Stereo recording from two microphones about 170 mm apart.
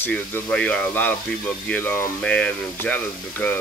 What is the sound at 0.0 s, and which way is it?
Speech, 5° left (ahead or behind).